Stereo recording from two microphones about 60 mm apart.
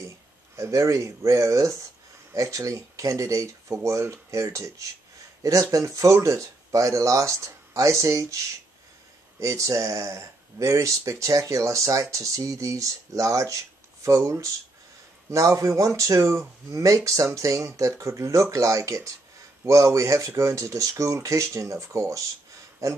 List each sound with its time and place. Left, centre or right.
0.6 s speech: right
9.4 s speech: right